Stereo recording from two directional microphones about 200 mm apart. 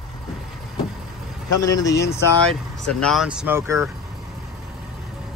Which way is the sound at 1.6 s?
20° left (ahead or behind).